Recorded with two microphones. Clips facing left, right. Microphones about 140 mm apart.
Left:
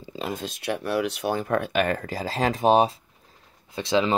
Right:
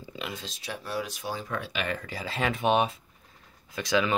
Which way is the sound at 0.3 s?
55° left (ahead or behind).